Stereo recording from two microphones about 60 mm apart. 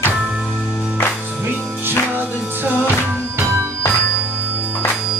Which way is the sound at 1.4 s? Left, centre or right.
Right.